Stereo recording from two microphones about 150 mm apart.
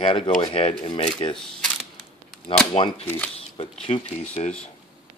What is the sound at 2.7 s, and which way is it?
Speech, 35° left (ahead or behind).